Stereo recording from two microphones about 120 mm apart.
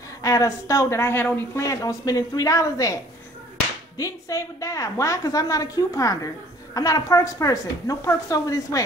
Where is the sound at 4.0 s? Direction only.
25° left (ahead or behind).